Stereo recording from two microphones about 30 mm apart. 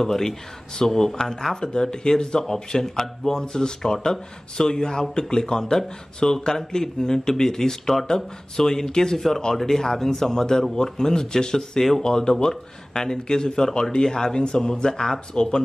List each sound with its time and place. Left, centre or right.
0.0 s a man's voice: centre